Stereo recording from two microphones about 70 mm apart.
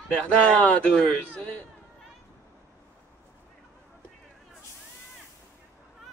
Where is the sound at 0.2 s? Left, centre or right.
Centre.